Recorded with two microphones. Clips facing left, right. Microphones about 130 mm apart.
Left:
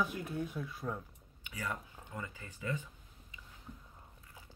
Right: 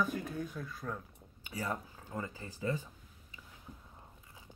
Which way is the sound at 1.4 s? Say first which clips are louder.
Right 3 dB; 35° right (ahead or behind).